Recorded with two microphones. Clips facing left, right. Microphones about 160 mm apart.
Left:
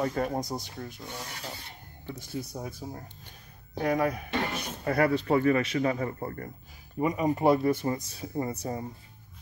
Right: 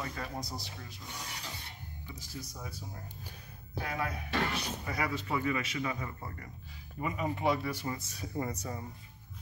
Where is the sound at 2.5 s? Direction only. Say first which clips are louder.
Left 8 dB; 50° left (ahead or behind).